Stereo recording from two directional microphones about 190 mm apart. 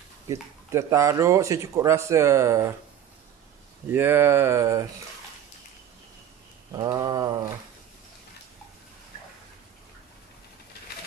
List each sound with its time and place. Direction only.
0.3 s speech: 15° right (ahead or behind)
3.9 s speech: 10° right (ahead or behind)
6.7 s mantra: 20° right (ahead or behind)